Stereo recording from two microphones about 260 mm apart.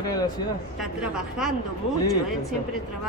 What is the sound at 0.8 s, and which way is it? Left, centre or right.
Speech, centre.